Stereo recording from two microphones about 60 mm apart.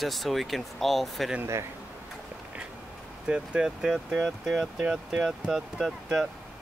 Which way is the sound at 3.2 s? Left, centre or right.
Centre.